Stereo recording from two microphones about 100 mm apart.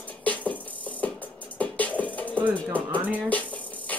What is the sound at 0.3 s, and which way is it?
Music, 15° left (ahead or behind).